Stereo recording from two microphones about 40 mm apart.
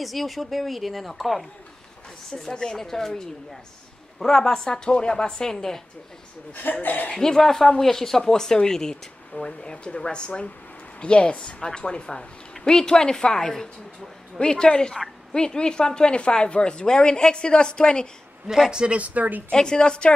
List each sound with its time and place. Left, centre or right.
0.0 s a woman's voice: centre
2.5 s a woman's voice: centre
6.5 s speech: left
7.1 s a woman's voice: centre
18.7 s speech: right
18.9 s a woman's voice: right
19.5 s speech: centre